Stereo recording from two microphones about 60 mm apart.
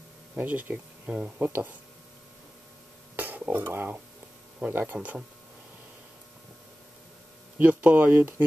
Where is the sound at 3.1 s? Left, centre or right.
Right.